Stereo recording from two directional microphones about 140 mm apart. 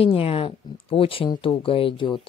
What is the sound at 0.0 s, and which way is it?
Speech, 45° left (ahead or behind).